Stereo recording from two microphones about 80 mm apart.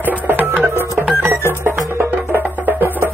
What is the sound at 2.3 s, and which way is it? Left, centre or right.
Music, right.